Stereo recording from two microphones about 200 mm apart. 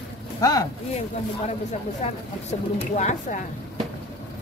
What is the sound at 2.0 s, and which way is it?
Speech, 35° left (ahead or behind).